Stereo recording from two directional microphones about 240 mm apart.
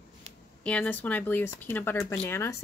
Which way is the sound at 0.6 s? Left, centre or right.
Centre.